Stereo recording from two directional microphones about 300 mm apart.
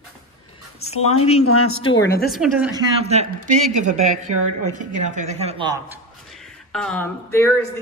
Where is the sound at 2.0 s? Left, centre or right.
Left.